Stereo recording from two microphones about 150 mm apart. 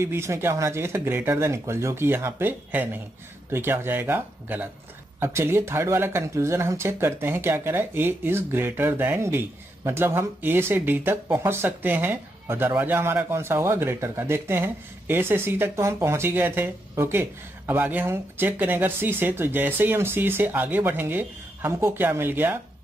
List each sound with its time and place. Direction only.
0.0 s speech: 15° right (ahead or behind)